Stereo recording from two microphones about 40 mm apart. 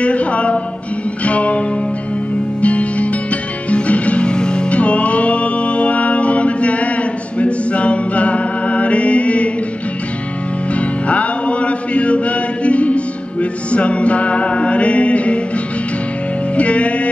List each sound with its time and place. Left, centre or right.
0.0 s music: left
2.6 s music: left
10.8 s music: left
16.5 s music: left